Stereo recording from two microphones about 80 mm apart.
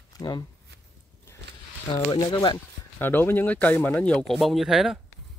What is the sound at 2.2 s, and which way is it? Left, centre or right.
Speech, left.